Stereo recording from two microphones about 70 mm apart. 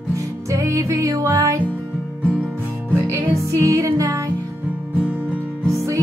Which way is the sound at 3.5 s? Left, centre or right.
Right.